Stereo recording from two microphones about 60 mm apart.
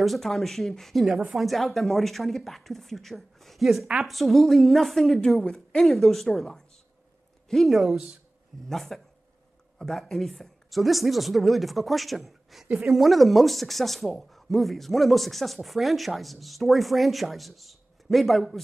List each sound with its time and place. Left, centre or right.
0.0 s speech: centre
3.6 s speech: centre
5.4 s speech: left
5.8 s speech: centre